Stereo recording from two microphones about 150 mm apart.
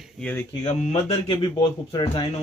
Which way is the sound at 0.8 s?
45° left (ahead or behind).